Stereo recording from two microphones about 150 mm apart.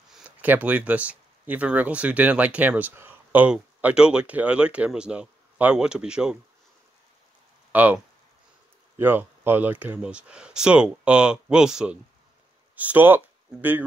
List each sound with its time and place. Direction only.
0.1 s speech: 10° right (ahead or behind)
7.7 s speech: 10° right (ahead or behind)